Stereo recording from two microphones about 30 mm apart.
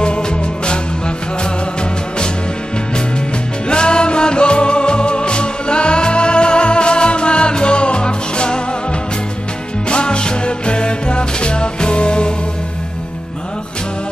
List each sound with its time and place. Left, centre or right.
0.0 s music: left
3.6 s music: left
9.8 s music: left